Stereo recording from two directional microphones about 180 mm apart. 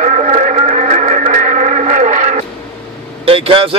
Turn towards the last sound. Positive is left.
turn(degrees=-30)  # may be behind; listen again after turning